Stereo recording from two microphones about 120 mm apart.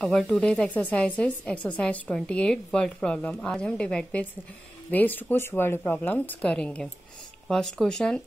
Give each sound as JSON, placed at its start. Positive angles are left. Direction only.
{"t": 0.0, "sound": "speech", "side_deg": 5}